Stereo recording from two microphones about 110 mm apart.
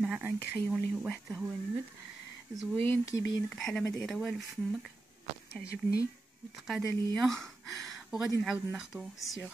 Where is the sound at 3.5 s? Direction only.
5° left (ahead or behind).